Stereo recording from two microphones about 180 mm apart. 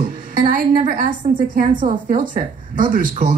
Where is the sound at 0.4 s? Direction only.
45° right (ahead or behind).